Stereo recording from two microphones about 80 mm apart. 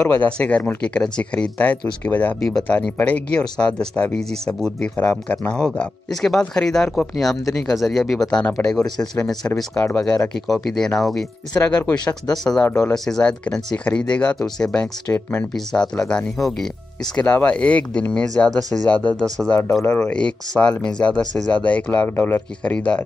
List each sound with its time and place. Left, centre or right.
0.1 s speech: left
4.1 s speech: centre
9.9 s speech: centre
11.5 s speech: centre
17.2 s speech: left